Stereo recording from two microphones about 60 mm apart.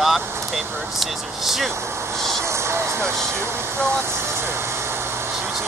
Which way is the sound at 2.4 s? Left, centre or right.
Right.